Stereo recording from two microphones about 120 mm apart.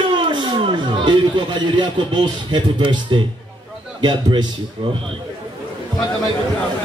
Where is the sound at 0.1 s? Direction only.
40° right (ahead or behind).